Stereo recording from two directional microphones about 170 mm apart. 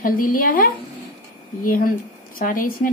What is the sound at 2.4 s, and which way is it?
Speech, 55° left (ahead or behind).